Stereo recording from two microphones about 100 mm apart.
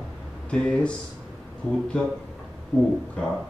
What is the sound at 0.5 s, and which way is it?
Speech, 10° left (ahead or behind).